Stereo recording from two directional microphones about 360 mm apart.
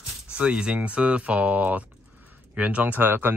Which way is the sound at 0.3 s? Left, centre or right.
Centre.